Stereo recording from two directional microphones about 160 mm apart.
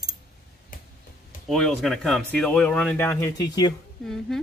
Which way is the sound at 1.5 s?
Centre (ahead or behind).